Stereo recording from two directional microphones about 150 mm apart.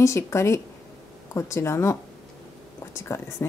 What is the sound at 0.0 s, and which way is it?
Speech, 20° left (ahead or behind).